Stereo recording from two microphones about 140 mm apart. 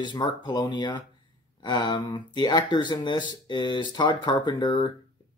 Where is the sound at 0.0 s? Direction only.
30° left (ahead or behind).